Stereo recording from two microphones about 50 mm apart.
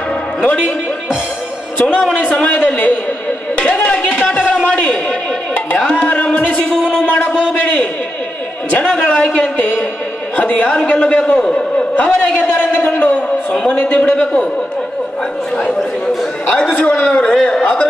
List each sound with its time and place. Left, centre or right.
0.4 s a man's voice: left
2.1 s a man's voice: left
3.6 s a sound: left
5.9 s music: left
6.7 s a sound: centre
8.7 s a man's voice: centre
15.5 s a man's voice: left